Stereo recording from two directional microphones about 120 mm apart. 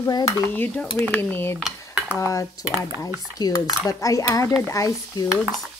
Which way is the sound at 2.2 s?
25° left (ahead or behind).